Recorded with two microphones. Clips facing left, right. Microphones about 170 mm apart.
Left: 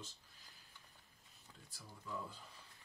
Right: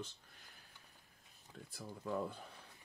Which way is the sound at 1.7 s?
60° right (ahead or behind).